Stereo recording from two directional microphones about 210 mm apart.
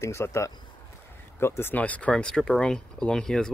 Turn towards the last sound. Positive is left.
turn(degrees=5)  # may be behind; listen again after turning